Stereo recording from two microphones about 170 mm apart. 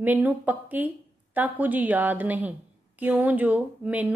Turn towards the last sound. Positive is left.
turn(degrees=-10)  # may be behind; listen again after turning